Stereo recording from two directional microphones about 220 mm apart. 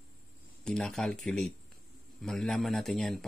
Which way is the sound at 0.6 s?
5° left (ahead or behind).